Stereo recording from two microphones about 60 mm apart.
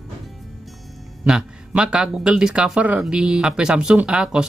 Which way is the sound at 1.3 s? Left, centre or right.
Centre.